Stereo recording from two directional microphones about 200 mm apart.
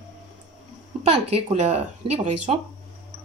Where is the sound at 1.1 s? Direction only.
30° right (ahead or behind).